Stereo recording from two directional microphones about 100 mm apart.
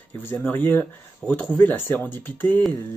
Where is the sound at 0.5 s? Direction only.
20° left (ahead or behind).